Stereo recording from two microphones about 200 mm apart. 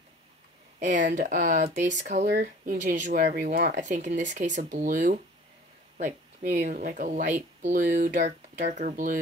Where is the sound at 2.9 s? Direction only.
40° right (ahead or behind).